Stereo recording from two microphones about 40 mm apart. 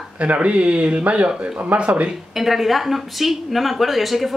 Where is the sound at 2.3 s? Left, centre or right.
Centre.